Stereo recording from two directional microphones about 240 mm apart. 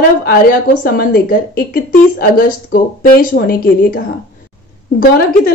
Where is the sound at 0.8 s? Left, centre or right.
Left.